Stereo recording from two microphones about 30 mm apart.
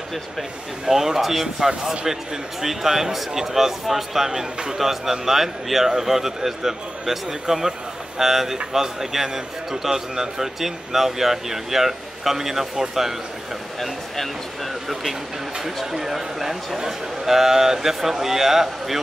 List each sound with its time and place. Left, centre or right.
0.8 s a man's voice: centre
4.3 s a man's voice: right
4.7 s a man's voice: centre
14.1 s speech: centre
15.6 s a man's voice: centre